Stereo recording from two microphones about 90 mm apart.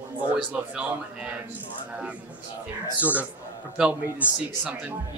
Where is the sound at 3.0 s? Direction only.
15° right (ahead or behind).